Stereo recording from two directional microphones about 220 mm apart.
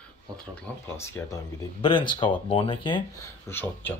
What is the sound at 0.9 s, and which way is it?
Speech, 10° left (ahead or behind).